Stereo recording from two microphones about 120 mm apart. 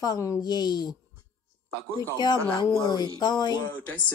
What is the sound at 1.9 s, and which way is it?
Speech, 35° left (ahead or behind).